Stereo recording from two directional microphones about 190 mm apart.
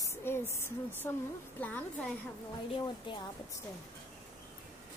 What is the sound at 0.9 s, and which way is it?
Speech, 10° left (ahead or behind).